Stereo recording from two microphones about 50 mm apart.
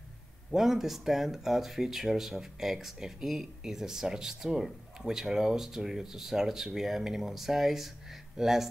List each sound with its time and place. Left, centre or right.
0.5 s speech: centre